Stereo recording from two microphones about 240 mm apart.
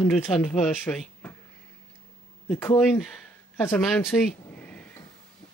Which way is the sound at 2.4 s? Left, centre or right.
Centre.